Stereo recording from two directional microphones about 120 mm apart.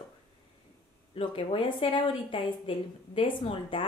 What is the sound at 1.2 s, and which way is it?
A woman's voice, 45° left (ahead or behind).